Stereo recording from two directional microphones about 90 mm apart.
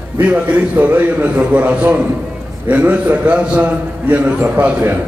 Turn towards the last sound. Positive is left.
turn(degrees=-15)  # may be behind; listen again after turning